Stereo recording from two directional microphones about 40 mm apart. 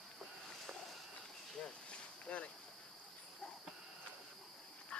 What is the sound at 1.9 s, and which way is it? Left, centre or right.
Cricket, left.